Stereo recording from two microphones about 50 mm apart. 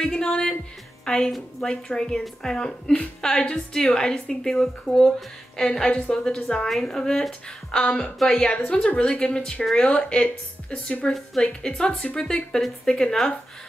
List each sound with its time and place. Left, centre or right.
0.0 s a woman's voice: centre